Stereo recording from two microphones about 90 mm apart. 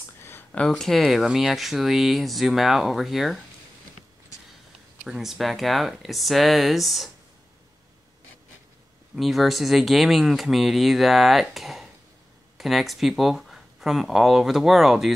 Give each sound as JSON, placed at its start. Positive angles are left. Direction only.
{"t": 0.2, "sound": "a sound", "side_deg": 25}
{"t": 0.6, "sound": "speech", "side_deg": 5}
{"t": 5.0, "sound": "speech", "side_deg": -5}
{"t": 9.1, "sound": "speech", "side_deg": 0}